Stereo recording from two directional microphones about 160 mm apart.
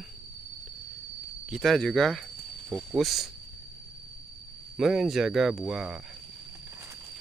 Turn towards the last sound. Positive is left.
turn(degrees=-5)  # may be behind; listen again after turning